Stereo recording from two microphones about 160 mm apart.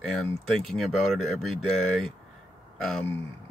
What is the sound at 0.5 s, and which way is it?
Speech, centre (ahead or behind).